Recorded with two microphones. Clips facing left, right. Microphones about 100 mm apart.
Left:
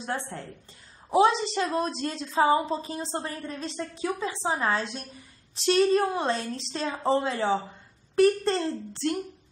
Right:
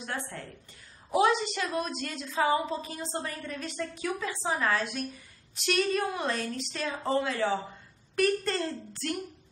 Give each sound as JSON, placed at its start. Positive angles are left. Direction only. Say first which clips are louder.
{"t": 0.0, "sound": "a woman's voice", "louder": "left 4 dB", "side_deg": 30}